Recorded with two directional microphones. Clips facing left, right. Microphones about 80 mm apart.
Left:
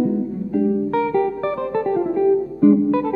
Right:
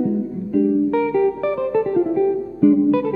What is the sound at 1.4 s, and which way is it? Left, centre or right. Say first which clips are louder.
Music: right 2 dB; left.